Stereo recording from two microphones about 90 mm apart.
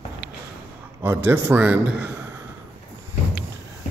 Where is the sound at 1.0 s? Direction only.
25° right (ahead or behind).